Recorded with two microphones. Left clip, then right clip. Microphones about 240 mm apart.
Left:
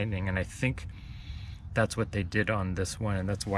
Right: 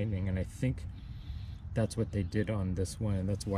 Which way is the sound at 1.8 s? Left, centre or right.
Centre.